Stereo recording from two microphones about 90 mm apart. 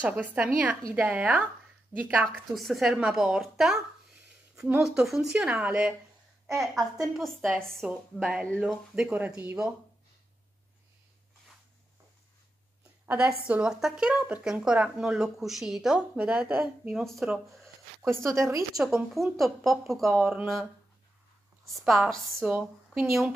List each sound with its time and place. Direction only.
0.0 s a woman's voice: 15° right (ahead or behind)
2.5 s a woman's voice: centre (ahead or behind)
4.8 s speech: 5° right (ahead or behind)
6.6 s a woman's voice: centre (ahead or behind)
7.8 s a woman's voice: 10° right (ahead or behind)
13.0 s speech: 20° right (ahead or behind)
17.0 s a woman's voice: centre (ahead or behind)
18.0 s speech: 35° right (ahead or behind)
18.8 s a woman's voice: 10° right (ahead or behind)
21.7 s a woman's voice: centre (ahead or behind)
22.4 s speech: 10° right (ahead or behind)